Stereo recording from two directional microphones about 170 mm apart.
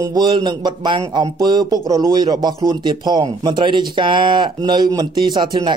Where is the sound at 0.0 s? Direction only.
25° right (ahead or behind).